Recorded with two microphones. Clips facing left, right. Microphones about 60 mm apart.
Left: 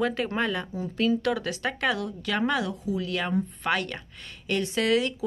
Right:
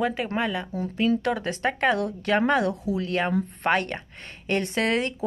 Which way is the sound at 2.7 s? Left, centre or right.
Right.